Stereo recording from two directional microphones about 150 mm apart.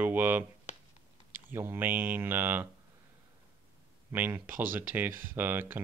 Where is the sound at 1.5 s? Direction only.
15° right (ahead or behind).